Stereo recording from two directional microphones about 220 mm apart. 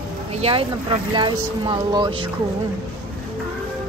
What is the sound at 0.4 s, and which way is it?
Speech, 25° right (ahead or behind).